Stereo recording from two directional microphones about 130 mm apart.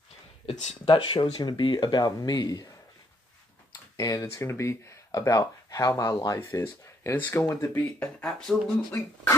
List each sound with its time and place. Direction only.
0.5 s speech: 55° left (ahead or behind)
0.8 s speech: 40° left (ahead or behind)
3.9 s speech: 25° left (ahead or behind)
8.0 s speech: 5° left (ahead or behind)